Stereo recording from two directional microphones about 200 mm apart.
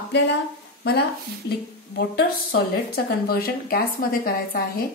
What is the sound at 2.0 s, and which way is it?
Speech, 55° left (ahead or behind).